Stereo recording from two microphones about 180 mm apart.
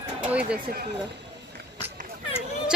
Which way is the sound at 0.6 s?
60° right (ahead or behind).